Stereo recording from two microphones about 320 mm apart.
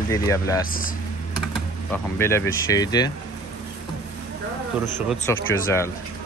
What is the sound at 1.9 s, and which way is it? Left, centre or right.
Speech, centre.